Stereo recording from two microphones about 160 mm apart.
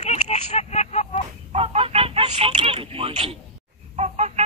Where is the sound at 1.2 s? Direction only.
40° right (ahead or behind).